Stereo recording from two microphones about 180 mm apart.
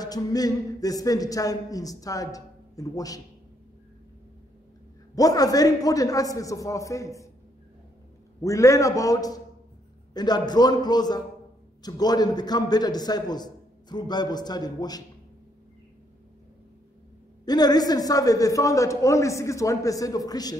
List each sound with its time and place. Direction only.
0.0 s a man's voice: 20° left (ahead or behind)
5.1 s a man's voice: 20° left (ahead or behind)
8.4 s a man's voice: 15° left (ahead or behind)
17.5 s a man's voice: 20° left (ahead or behind)